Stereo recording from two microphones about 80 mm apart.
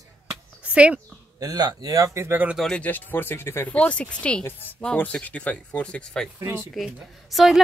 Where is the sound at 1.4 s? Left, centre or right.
Right.